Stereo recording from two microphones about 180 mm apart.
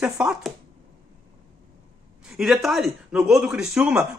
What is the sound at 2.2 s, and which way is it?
Speech, 5° right (ahead or behind).